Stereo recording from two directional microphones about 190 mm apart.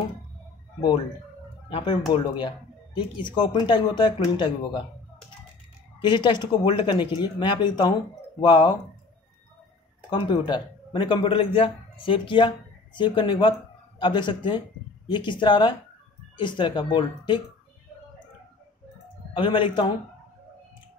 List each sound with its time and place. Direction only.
1.7 s speech: 25° left (ahead or behind)
5.9 s speech: 25° left (ahead or behind)
10.0 s a man's voice: 25° left (ahead or behind)
19.3 s speech: 25° left (ahead or behind)